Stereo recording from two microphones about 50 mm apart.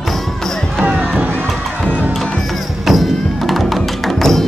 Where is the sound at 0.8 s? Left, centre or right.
Right.